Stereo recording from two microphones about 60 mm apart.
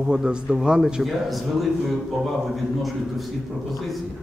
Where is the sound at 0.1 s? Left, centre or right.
Centre.